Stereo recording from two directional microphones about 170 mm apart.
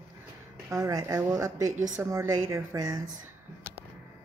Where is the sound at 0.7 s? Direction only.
20° right (ahead or behind).